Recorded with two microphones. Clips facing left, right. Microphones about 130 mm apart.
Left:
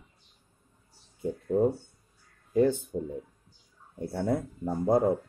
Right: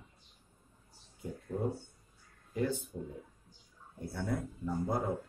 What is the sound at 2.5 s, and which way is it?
Speech, 65° left (ahead or behind).